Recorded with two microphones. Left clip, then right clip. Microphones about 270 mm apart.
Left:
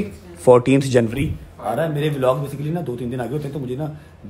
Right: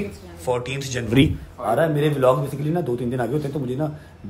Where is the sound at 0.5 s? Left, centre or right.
Centre.